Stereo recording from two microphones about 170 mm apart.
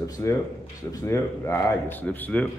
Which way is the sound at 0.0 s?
15° left (ahead or behind).